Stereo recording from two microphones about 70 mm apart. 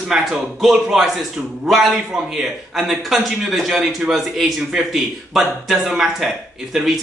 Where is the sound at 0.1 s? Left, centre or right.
Centre.